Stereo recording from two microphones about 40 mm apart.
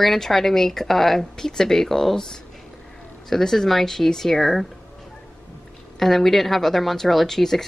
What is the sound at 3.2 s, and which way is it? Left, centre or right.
Speech, centre.